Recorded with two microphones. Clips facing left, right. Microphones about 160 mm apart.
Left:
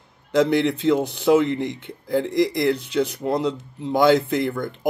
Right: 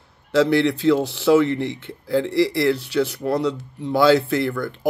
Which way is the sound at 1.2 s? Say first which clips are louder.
Right 1 dB; 20° left (ahead or behind).